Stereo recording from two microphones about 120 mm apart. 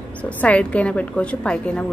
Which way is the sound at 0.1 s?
10° left (ahead or behind).